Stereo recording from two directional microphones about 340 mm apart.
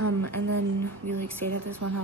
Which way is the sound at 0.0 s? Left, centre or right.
Right.